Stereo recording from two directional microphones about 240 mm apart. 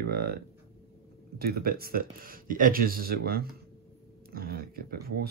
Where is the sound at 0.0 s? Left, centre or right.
Right.